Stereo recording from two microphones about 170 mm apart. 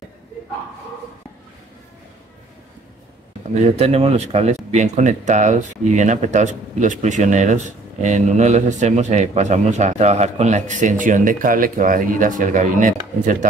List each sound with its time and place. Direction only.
3.5 s speech: 40° right (ahead or behind)